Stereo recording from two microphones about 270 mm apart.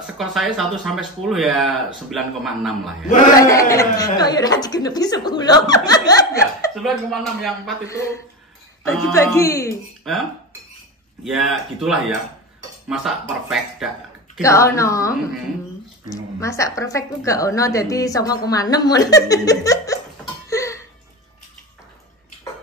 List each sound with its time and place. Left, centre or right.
0.0 s speech: centre
3.3 s a woman's voice: centre
6.7 s speech: centre
9.1 s a woman's voice: centre
10.1 s speech: centre
11.2 s speech: centre
14.4 s a woman's voice: centre
16.3 s a woman's voice: centre
20.4 s a sound: centre